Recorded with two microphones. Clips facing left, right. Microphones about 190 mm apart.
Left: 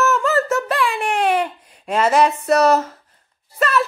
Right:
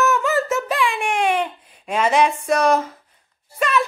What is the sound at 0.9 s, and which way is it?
Baby cry, 10° right (ahead or behind).